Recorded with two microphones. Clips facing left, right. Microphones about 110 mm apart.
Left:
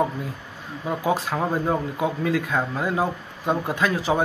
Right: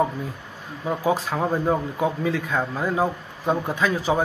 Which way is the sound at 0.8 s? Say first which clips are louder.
Right 1 dB; centre (ahead or behind).